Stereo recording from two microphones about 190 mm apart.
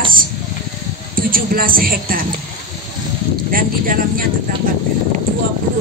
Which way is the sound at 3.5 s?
45° right (ahead or behind).